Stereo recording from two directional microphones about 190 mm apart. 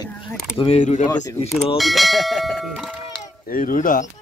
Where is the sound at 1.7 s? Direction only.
Centre (ahead or behind).